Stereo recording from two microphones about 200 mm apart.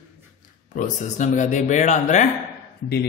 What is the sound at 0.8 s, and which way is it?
Speech, 40° left (ahead or behind).